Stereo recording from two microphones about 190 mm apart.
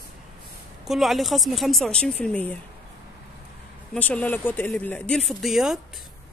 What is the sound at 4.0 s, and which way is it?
A woman's voice, 10° left (ahead or behind).